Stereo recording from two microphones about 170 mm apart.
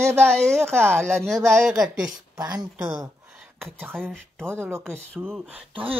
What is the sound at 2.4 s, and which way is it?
Speech, 20° right (ahead or behind).